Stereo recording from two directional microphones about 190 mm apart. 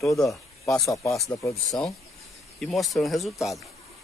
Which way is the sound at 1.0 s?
15° left (ahead or behind).